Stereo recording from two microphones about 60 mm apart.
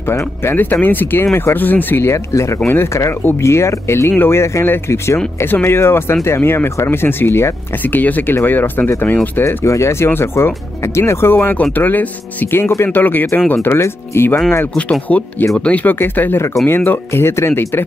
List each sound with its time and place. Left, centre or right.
0.6 s speech: left
3.4 s speech: left
9.7 s speech: left
13.7 s speech: left
14.9 s speech: left